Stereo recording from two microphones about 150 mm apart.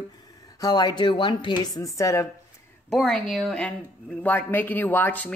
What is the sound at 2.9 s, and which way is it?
Speech, centre (ahead or behind).